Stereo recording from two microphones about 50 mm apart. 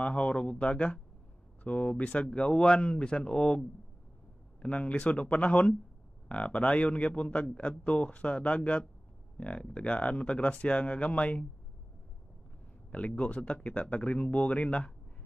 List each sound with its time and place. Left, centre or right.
0.0 s speech: left
12.9 s speech: left